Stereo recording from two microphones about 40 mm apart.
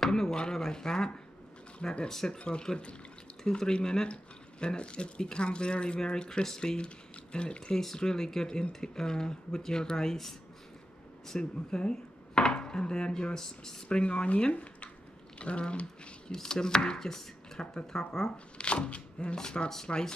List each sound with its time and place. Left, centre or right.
0.0 s speech: centre
2.0 s speech: centre
2.3 s speech: left
7.3 s speech: left
7.8 s speech: centre
11.3 s dishes: left
13.9 s speech: left
16.3 s speech: centre
18.6 s speech: left